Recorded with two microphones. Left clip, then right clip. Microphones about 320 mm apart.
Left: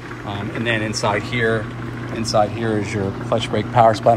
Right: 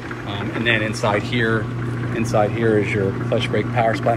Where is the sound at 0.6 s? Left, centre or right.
Centre.